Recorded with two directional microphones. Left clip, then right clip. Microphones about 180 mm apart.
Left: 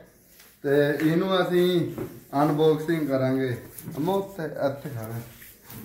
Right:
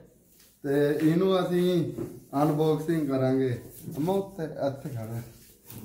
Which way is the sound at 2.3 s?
15° right (ahead or behind).